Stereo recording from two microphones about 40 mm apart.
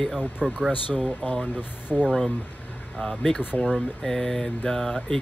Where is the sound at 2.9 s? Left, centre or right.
Centre.